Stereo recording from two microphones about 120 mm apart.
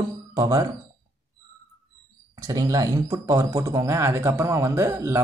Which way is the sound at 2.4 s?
30° right (ahead or behind).